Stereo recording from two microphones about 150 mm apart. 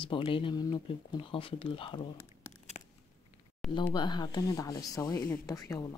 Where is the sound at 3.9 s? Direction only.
30° left (ahead or behind).